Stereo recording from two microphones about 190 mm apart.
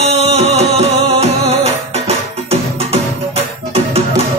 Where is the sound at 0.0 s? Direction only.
35° right (ahead or behind).